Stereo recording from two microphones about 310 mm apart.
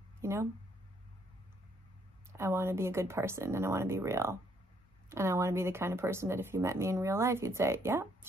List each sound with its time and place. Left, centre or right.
0.2 s speech: centre
2.3 s speech: centre